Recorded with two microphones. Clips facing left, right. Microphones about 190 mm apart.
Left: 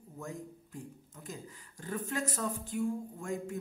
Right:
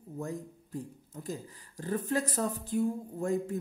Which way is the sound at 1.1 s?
35° right (ahead or behind).